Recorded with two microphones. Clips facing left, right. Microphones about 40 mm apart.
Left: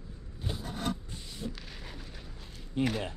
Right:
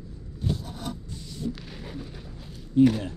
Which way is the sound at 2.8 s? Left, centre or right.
Centre.